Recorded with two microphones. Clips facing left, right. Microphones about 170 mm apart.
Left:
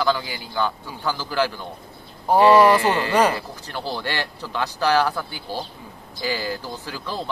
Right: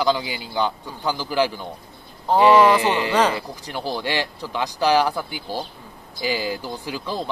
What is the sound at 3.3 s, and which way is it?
Speech, 15° right (ahead or behind).